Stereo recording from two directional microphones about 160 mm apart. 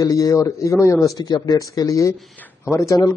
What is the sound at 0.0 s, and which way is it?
A man's voice, 20° left (ahead or behind).